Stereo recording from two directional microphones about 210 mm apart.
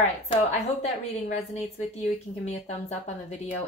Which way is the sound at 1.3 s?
30° left (ahead or behind).